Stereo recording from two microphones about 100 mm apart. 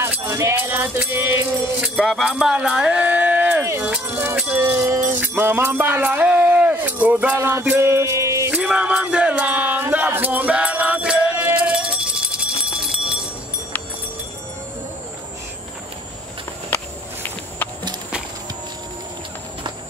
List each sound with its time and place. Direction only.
0.2 s music: 30° right (ahead or behind)
1.8 s speech: 5° right (ahead or behind)
3.6 s music: 25° right (ahead or behind)
3.9 s speech: 15° right (ahead or behind)
4.4 s music: 20° right (ahead or behind)
8.5 s music: 10° right (ahead or behind)
16.7 s walk: 20° left (ahead or behind)